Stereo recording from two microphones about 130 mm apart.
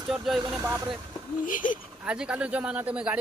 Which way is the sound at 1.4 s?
90° left.